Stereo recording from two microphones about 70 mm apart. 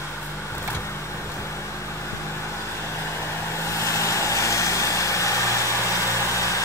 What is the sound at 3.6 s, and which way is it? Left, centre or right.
Vehicle, left.